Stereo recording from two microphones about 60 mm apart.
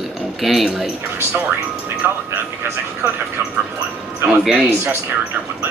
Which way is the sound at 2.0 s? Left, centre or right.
Right.